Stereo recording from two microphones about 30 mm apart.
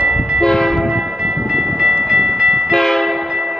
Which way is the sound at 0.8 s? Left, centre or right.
Centre.